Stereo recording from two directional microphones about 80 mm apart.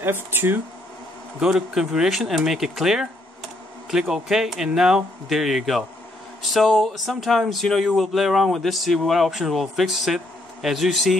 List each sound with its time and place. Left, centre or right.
0.0 s speech: right
1.4 s speech: centre
4.1 s speech: centre